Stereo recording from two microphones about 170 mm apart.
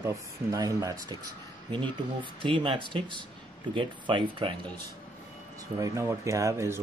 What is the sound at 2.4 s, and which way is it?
Speech, 30° right (ahead or behind).